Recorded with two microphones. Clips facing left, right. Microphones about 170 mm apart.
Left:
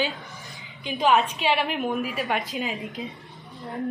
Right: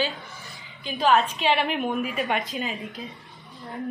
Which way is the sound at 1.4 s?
Centre (ahead or behind).